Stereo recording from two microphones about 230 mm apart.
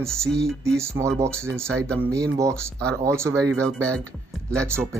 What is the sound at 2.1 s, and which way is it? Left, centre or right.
Speech, centre.